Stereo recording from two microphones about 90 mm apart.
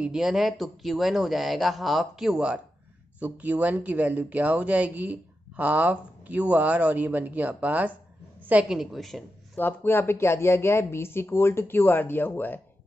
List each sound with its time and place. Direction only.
0.0 s speech: 5° right (ahead or behind)
8.4 s a sound: 20° right (ahead or behind)
8.6 s speech: centre (ahead or behind)
9.6 s speech: 20° left (ahead or behind)